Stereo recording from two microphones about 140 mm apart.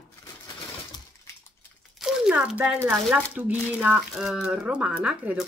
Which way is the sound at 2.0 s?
5° right (ahead or behind).